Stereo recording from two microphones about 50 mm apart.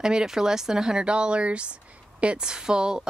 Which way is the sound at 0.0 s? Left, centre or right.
Centre.